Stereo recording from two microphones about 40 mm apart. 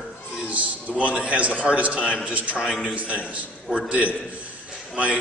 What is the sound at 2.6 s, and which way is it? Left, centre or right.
Speech, centre.